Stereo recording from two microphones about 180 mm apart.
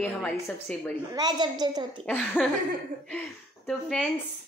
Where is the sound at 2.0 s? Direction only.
5° left (ahead or behind).